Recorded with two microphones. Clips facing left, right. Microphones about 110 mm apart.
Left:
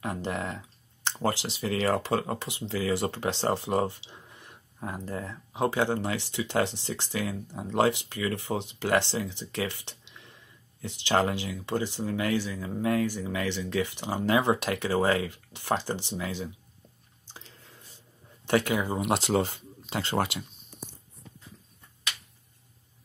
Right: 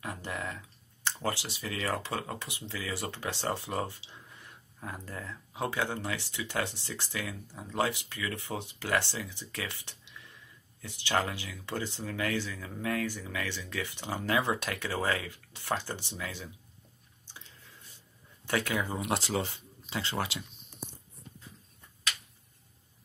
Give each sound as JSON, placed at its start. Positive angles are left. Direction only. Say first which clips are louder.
{"t": 0.0, "sound": "computer keyboard", "louder": "left 6 dB", "side_deg": 30}
{"t": 1.4, "sound": "speech", "louder": "left 8 dB", "side_deg": 30}
{"t": 18.7, "sound": "speech", "louder": "left 5 dB", "side_deg": 15}
{"t": 19.2, "sound": "speech", "louder": "left 6 dB", "side_deg": 50}